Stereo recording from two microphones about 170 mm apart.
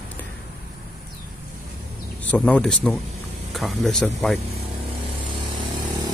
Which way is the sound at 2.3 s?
5° left (ahead or behind).